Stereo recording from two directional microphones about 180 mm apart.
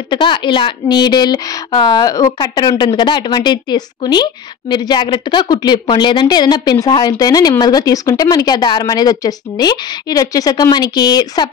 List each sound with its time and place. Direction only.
0.1 s speech: 25° left (ahead or behind)